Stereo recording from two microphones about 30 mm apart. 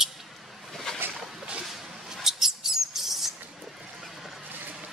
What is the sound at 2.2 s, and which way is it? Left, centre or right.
Mouse, centre.